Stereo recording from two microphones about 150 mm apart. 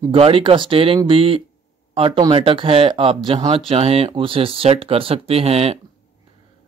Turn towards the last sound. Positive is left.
turn(degrees=-40)  # may be behind; listen again after turning